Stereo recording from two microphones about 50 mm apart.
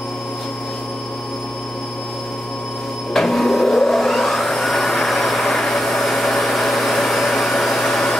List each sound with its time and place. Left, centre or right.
3.1 s vacuum cleaner: centre